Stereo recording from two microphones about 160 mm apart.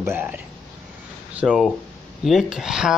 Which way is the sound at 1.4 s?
5° right (ahead or behind).